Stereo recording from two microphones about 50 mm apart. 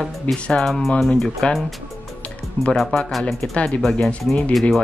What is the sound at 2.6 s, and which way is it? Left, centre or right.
Speech, left.